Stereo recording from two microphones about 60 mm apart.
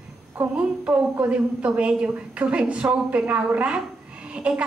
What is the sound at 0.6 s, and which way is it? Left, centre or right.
A woman's voice, right.